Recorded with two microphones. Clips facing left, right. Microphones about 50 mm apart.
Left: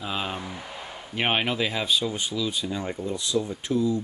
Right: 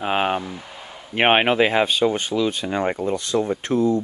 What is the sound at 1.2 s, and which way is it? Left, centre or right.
Speech, right.